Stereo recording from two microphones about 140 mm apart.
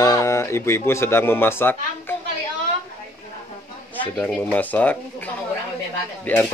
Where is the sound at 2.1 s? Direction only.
15° left (ahead or behind).